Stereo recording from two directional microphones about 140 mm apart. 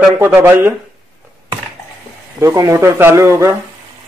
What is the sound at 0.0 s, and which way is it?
Speech, 10° right (ahead or behind).